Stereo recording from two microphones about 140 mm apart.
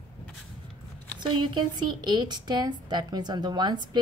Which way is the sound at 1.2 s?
30° right (ahead or behind).